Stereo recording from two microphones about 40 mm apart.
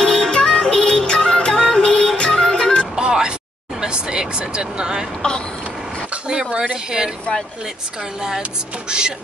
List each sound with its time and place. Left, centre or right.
0.0 s music: centre
3.0 s vehicle: right
5.2 s speech: left
6.7 s speech: centre
8.8 s speech: right